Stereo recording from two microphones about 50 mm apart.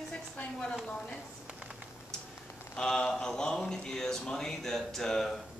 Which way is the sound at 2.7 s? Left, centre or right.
Centre.